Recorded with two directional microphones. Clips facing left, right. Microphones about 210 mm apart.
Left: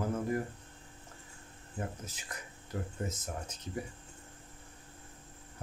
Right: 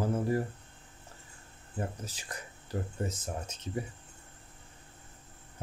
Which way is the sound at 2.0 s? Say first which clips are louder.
Right 3 dB; 35° right (ahead or behind).